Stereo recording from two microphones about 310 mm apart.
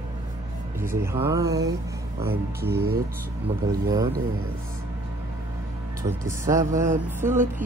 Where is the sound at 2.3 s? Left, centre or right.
Right.